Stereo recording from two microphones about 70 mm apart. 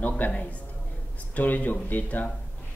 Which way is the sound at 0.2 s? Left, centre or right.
Left.